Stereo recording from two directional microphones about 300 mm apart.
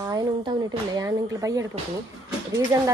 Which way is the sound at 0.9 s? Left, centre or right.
Centre.